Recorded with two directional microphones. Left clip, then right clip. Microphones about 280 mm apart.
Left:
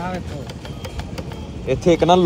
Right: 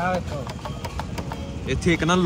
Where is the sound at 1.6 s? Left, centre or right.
Centre.